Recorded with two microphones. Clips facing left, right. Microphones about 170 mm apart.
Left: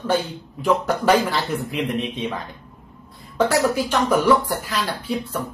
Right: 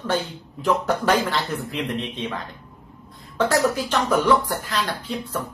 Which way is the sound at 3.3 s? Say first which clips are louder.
Left 1 dB; 10° left (ahead or behind).